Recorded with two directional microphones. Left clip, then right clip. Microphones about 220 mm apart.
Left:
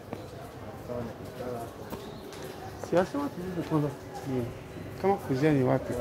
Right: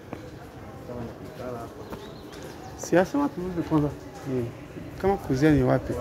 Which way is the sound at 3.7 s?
20° right (ahead or behind).